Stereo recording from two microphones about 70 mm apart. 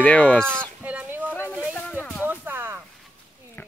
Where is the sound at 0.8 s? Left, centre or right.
Right.